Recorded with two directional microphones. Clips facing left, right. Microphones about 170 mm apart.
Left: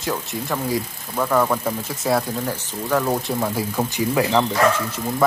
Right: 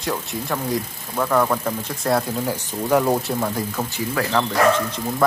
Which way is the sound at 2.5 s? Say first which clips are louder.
Right 4 dB; 15° right (ahead or behind).